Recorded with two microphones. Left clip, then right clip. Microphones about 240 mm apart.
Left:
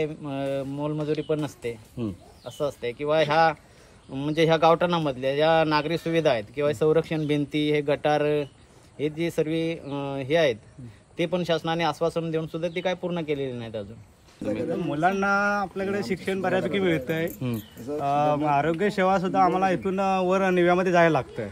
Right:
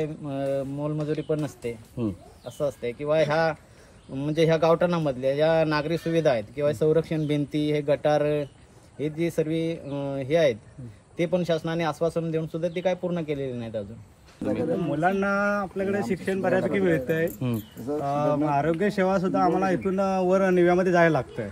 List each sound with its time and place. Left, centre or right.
0.0 s speech: centre
2.0 s speech: centre
2.6 s speech: centre
14.4 s speech: centre
17.4 s speech: centre
18.0 s speech: centre